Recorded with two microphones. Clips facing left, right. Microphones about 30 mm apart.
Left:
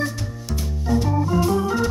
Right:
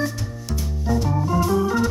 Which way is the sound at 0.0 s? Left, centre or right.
Centre.